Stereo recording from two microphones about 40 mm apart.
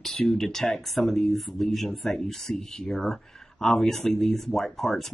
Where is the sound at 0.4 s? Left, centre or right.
Centre.